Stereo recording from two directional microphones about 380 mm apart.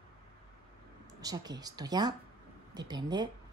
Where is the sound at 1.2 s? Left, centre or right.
Centre.